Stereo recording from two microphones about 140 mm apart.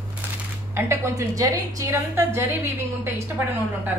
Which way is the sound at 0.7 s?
20° right (ahead or behind).